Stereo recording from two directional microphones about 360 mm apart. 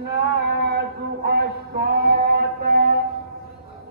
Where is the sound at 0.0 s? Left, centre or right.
Right.